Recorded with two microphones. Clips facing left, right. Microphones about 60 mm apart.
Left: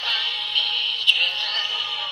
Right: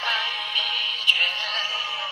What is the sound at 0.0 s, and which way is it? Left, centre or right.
Music, right.